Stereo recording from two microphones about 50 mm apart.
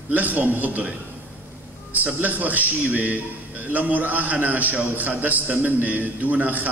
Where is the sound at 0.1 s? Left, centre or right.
Right.